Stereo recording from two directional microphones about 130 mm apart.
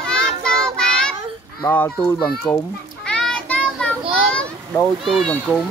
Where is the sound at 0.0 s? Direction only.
5° left (ahead or behind).